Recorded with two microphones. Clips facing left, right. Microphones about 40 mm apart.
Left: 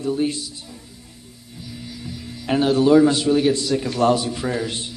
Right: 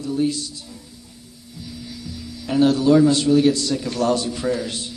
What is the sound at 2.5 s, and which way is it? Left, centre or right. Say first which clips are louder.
Speech: right 1 dB; left.